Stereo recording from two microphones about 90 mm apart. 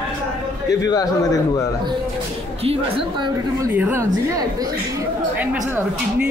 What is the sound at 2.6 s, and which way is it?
Speech, 90° right.